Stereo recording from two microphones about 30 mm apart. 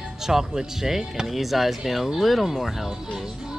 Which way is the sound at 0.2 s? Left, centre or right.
Centre.